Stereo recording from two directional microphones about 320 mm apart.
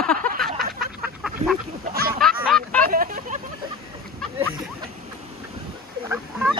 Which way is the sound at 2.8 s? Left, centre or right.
Right.